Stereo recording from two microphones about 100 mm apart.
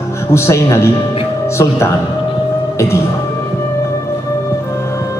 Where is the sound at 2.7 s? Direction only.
25° left (ahead or behind).